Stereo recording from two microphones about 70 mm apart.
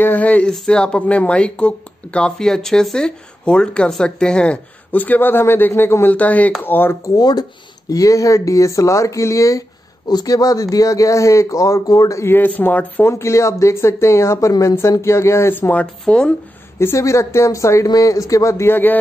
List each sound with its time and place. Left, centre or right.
0.0 s speech: left
0.5 s speech: centre
4.9 s a man's voice: left
6.0 s a man's voice: left
7.2 s speech: left
7.9 s speech: left
10.0 s speech: left
12.3 s speech: left
13.0 s a man's voice: left
15.5 s speech: left
16.8 s speech: left